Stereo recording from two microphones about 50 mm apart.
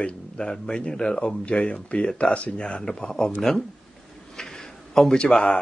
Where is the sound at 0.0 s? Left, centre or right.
Centre.